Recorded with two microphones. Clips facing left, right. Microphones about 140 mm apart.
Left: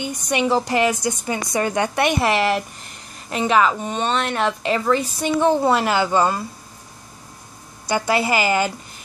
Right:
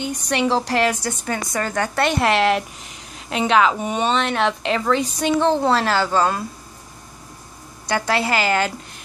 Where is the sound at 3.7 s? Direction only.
10° right (ahead or behind).